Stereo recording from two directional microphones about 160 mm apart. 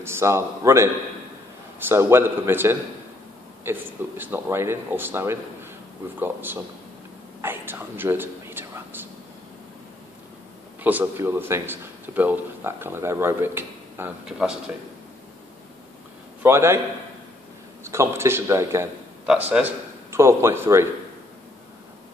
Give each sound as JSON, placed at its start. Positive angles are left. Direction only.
{"t": 0.0, "sound": "a man's voice", "side_deg": -15}
{"t": 10.8, "sound": "a man's voice", "side_deg": -10}
{"t": 16.4, "sound": "a man's voice", "side_deg": -15}
{"t": 17.8, "sound": "a man's voice", "side_deg": -15}